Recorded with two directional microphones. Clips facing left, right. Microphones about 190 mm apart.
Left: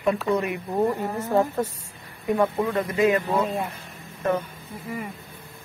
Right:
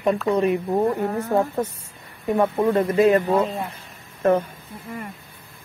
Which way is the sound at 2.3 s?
25° right (ahead or behind).